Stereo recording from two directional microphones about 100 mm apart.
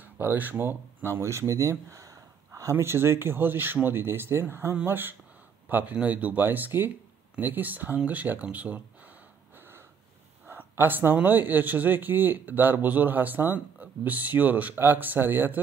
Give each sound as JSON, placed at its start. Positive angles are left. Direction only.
{"t": 0.0, "sound": "speech", "side_deg": -20}
{"t": 10.8, "sound": "speech", "side_deg": -20}